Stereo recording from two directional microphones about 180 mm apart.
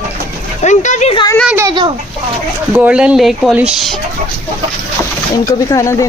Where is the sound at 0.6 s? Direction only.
40° left (ahead or behind).